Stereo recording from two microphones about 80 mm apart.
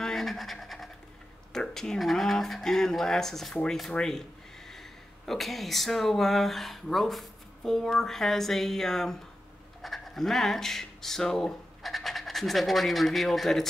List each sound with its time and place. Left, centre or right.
0.0 s scratch: centre
1.5 s speech: centre